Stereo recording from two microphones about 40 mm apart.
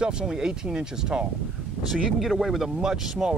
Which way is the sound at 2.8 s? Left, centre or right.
Centre.